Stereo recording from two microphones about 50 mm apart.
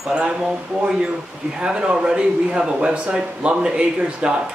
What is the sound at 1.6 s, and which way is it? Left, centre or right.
Speech, right.